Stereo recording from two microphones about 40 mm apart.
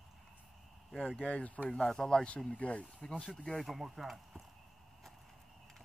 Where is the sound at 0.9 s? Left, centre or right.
Left.